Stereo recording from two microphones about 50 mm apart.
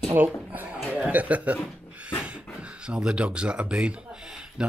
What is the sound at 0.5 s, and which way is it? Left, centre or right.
Chuckle, right.